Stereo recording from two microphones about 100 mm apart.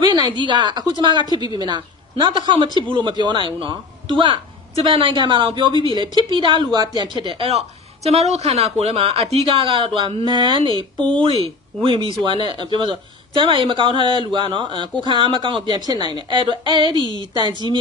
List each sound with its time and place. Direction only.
0.0 s a woman's voice: 40° right (ahead or behind)
7.2 s a woman's voice: 70° right (ahead or behind); by 17.7 s 45° right (ahead or behind)